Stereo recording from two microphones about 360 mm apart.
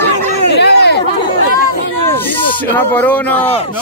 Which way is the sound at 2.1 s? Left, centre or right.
Centre.